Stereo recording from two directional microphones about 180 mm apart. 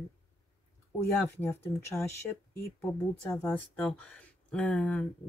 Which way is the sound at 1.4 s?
10° left (ahead or behind).